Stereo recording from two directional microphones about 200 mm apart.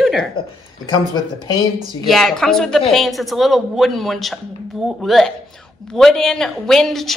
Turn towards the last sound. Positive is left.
turn(degrees=0)  # may be behind; listen again after turning